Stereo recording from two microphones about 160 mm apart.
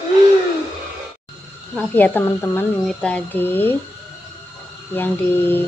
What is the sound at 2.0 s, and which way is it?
A woman's voice, 10° left (ahead or behind).